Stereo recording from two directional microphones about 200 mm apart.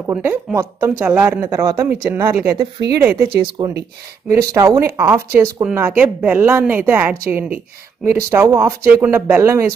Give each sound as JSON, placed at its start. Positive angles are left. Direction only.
{"t": 0.0, "sound": "speech", "side_deg": -10}
{"t": 3.6, "sound": "speech", "side_deg": -20}